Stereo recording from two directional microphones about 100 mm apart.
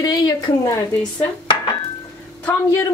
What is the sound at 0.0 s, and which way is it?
Speech, 40° left (ahead or behind).